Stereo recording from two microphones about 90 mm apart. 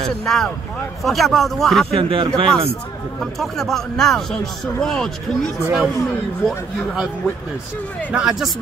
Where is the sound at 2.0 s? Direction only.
70° right (ahead or behind).